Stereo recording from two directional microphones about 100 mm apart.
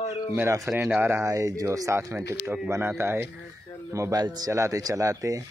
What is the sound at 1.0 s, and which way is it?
Speech, 25° right (ahead or behind).